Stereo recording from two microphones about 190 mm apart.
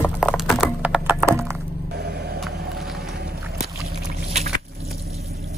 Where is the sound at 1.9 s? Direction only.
60° right (ahead or behind).